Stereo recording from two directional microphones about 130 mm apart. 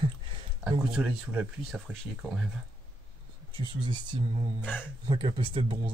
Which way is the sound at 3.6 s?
35° right (ahead or behind).